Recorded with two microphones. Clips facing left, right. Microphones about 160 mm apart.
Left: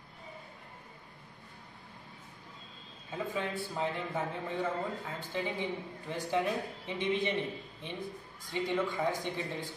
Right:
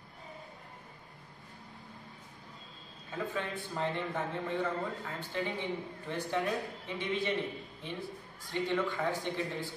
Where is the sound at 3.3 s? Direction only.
10° left (ahead or behind).